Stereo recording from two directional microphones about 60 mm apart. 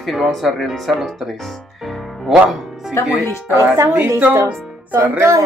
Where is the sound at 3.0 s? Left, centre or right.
Left.